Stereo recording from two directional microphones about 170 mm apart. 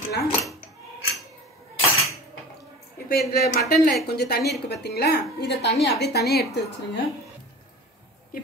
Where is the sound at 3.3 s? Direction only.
65° left (ahead or behind).